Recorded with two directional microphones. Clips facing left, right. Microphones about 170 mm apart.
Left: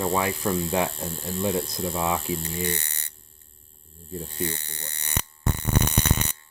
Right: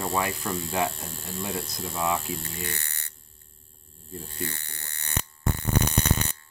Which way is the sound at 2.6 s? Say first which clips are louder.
Left 7 dB; 20° left (ahead or behind).